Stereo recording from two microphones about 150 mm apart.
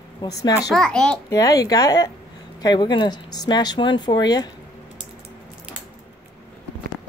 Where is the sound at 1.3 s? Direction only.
25° left (ahead or behind).